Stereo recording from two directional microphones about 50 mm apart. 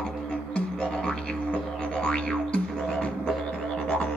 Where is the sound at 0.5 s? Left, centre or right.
Left.